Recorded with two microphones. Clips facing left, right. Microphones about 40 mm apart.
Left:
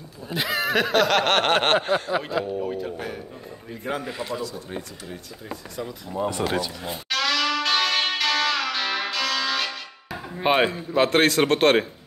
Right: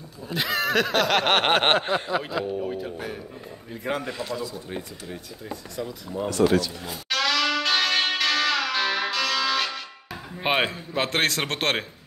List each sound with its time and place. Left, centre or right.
0.3 s speech: centre
2.0 s speech: centre
4.4 s speech: centre
5.5 s speech: centre
6.3 s speech: centre
7.1 s music: centre
10.4 s speech: centre
10.7 s speech: centre
11.2 s speech: centre